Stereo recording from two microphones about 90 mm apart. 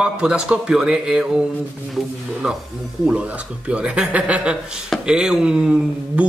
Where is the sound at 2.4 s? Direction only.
5° right (ahead or behind).